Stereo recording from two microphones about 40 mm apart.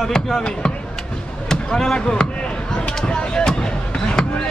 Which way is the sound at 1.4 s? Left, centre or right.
Centre.